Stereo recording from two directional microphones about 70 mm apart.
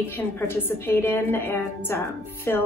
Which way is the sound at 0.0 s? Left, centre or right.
Left.